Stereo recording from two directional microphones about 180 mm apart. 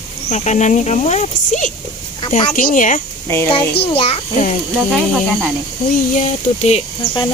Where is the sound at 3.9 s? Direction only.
35° left (ahead or behind).